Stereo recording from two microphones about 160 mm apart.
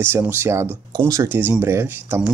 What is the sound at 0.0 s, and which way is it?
Speech, 15° right (ahead or behind).